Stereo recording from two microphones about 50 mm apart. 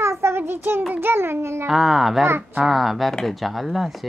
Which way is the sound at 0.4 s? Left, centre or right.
Right.